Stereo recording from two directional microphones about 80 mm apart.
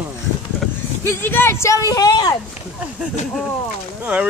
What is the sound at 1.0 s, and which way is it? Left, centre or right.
Speech, left.